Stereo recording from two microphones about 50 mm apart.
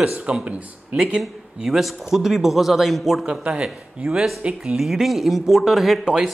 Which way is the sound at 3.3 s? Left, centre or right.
Centre.